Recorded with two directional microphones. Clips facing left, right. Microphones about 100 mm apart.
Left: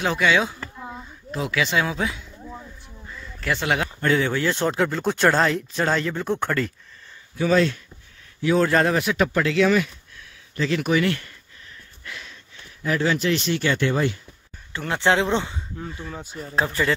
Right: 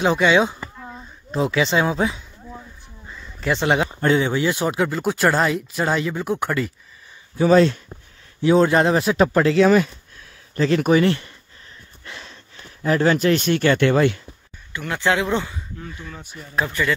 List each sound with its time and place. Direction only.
0.0 s speech: 25° right (ahead or behind)
3.1 s a sound: 20° right (ahead or behind)
3.6 s speech: 25° right (ahead or behind); by 6.7 s 5° right (ahead or behind)
7.3 s speech: 35° right (ahead or behind)
9.0 s speech: 30° right (ahead or behind); by 14.2 s 75° right (ahead or behind)
14.7 s speech: 30° left (ahead or behind)